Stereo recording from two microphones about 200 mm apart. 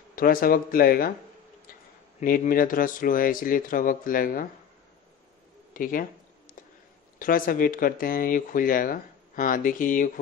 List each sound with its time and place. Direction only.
0.1 s speech: 45° left (ahead or behind)
2.1 s speech: 45° left (ahead or behind)
5.7 s speech: 45° left (ahead or behind)
7.2 s speech: 45° left (ahead or behind)